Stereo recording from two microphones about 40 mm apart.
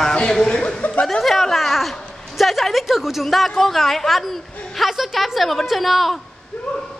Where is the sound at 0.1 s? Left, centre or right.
Left.